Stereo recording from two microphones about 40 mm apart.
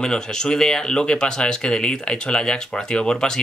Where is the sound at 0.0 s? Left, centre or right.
Centre.